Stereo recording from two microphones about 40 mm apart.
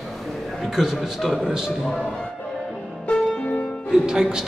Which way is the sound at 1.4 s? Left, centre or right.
Centre.